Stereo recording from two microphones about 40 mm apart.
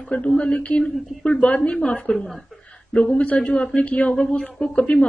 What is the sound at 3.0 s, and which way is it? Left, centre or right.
A man's voice, left.